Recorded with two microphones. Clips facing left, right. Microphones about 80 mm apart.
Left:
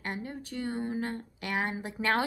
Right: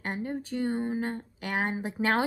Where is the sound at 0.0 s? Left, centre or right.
Right.